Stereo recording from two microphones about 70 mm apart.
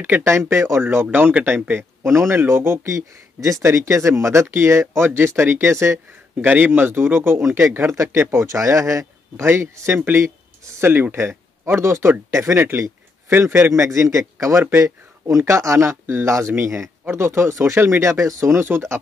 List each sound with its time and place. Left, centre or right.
0.0 s speech: right
1.0 s speech: centre
1.4 s speech: right
6.3 s speech: right
7.9 s speech: right
10.2 s a sound: right
10.9 s speech: right